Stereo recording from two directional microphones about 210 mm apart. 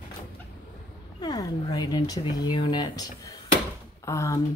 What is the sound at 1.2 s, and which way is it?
Speech, 20° left (ahead or behind).